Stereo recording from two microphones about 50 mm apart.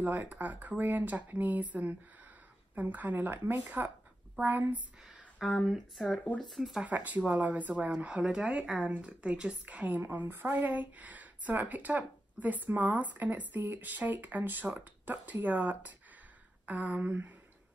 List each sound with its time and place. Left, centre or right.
0.0 s speech: right
5.0 s speech: centre
6.8 s speech: right
8.0 s a woman's voice: right
10.1 s speech: right